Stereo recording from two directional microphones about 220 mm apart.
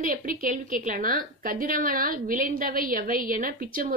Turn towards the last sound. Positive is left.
turn(degrees=-40)  # may be behind; listen again after turning